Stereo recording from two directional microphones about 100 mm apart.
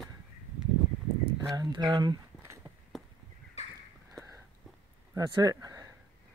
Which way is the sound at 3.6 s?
90° left.